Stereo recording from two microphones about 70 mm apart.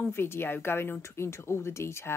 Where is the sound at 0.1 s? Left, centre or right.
Left.